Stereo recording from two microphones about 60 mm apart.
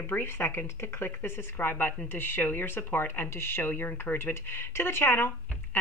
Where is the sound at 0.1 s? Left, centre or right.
Left.